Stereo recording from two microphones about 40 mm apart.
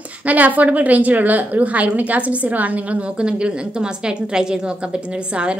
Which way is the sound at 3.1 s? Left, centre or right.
Right.